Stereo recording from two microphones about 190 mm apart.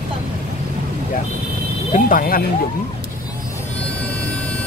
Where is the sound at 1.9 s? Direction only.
50° left (ahead or behind).